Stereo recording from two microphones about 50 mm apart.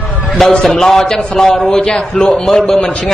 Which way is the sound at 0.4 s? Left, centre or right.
Centre.